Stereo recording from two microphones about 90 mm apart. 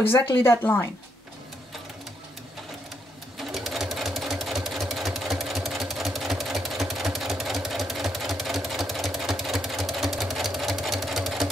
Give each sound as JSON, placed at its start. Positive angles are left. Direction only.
{"t": 0.0, "sound": "speech", "side_deg": 25}
{"t": 3.3, "sound": "sewing machine", "side_deg": 0}